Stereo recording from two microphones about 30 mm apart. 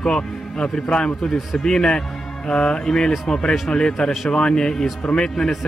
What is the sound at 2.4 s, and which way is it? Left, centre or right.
Speech, left.